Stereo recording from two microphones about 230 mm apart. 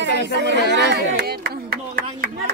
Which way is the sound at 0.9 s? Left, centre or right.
Right.